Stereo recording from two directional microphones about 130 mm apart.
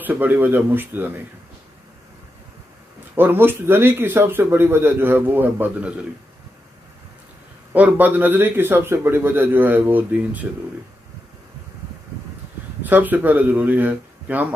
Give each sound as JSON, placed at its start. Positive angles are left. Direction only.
{"t": 0.0, "sound": "speech", "side_deg": -15}
{"t": 3.2, "sound": "speech", "side_deg": -15}
{"t": 7.7, "sound": "speech", "side_deg": -10}
{"t": 12.8, "sound": "speech", "side_deg": -15}